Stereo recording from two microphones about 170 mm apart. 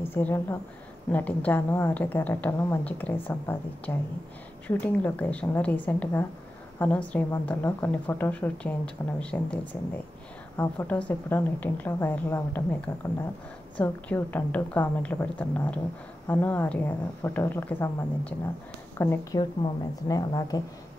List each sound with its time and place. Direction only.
0.1 s a woman's voice: 10° left (ahead or behind)